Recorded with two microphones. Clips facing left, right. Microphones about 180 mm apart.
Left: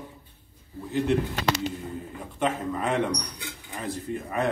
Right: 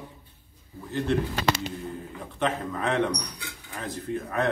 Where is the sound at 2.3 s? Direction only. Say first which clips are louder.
Left 1 dB; 10° left (ahead or behind).